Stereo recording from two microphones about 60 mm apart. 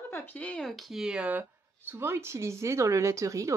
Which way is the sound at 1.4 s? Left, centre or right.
Right.